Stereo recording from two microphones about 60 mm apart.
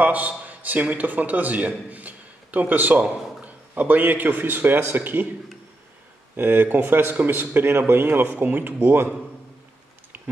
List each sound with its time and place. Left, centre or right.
0.0 s a man's voice: right
6.3 s a man's voice: right